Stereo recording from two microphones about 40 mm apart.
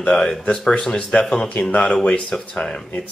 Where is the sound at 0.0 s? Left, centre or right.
Left.